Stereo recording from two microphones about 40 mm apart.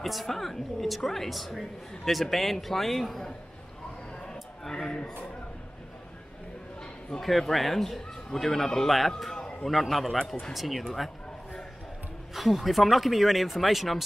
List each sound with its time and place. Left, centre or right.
0.0 s a woman's voice: centre
4.2 s a sound: centre
7.2 s a woman's voice: centre
9.3 s a sound: centre
9.7 s a woman's voice: centre
12.4 s a woman's voice: centre